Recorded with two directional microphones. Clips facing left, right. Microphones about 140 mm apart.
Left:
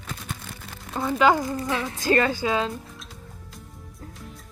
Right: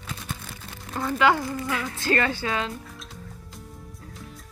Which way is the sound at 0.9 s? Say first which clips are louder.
Left 2 dB; 15° left (ahead or behind).